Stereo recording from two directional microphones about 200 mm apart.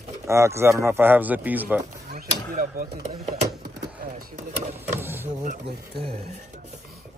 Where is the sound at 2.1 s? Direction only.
45° right (ahead or behind).